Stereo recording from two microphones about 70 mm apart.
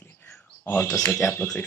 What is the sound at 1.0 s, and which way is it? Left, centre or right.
Speech, left.